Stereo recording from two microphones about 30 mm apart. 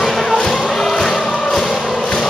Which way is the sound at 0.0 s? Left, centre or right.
Centre.